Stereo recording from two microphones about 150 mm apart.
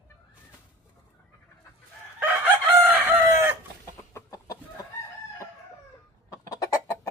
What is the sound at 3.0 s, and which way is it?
Chicken, 15° right (ahead or behind).